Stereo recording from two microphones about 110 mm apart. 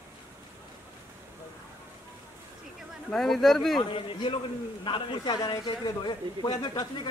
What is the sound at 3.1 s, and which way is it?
Speech, centre (ahead or behind).